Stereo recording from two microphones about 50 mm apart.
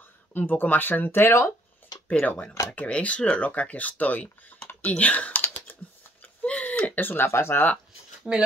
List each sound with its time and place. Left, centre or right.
0.3 s speech: left
2.0 s speech: left
4.9 s typing: left
6.4 s a sound: left
7.2 s speech: left
8.2 s speech: centre